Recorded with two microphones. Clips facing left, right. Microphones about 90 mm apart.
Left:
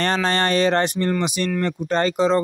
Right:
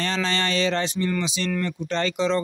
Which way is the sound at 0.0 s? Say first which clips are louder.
Left 5 dB; 50° left (ahead or behind).